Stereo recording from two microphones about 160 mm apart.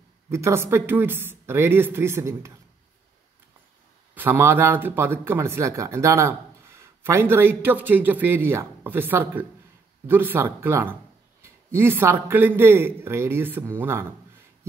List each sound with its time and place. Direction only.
0.3 s a man's voice: 15° right (ahead or behind)
4.1 s a man's voice: 15° right (ahead or behind)